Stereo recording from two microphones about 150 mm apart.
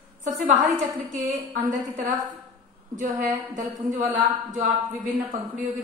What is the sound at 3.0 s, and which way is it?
Speech, 60° right (ahead or behind).